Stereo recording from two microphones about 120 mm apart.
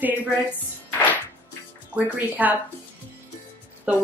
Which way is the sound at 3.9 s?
10° right (ahead or behind).